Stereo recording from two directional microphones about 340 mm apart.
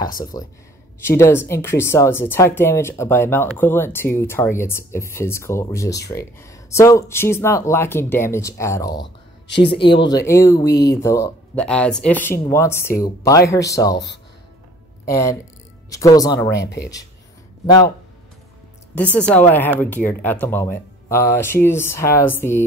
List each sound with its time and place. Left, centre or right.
0.2 s speech: centre
13.9 s speech: left
15.0 s speech: centre
17.6 s speech: centre
19.0 s speech: centre